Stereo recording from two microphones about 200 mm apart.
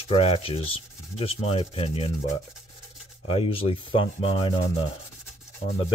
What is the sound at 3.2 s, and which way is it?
Sanding, 25° left (ahead or behind).